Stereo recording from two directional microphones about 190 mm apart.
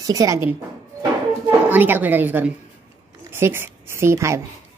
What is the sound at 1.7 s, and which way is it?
Speech, 10° right (ahead or behind).